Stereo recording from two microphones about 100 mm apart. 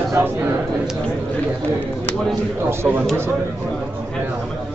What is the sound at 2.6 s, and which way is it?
Speech, 20° right (ahead or behind).